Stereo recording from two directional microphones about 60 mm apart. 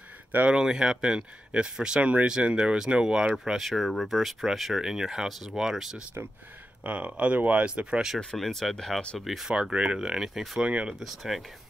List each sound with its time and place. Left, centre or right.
0.5 s speech: centre
3.5 s speech: centre
6.8 s speech: right
8.2 s speech: centre
10.6 s speech: centre
11.0 s speech: centre